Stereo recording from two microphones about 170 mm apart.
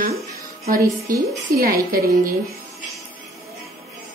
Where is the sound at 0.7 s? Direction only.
20° right (ahead or behind).